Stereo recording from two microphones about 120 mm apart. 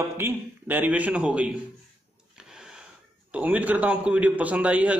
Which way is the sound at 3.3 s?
10° right (ahead or behind).